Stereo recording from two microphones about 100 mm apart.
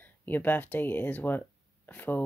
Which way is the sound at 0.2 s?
20° left (ahead or behind).